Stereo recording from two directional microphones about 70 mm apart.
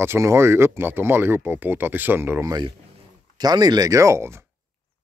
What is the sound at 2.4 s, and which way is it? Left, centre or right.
Speech, right.